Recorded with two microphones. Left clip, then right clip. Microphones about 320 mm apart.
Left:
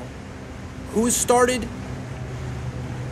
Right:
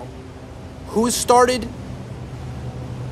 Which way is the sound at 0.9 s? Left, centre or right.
Centre.